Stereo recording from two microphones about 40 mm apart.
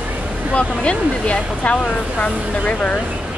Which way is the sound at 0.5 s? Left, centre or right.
Left.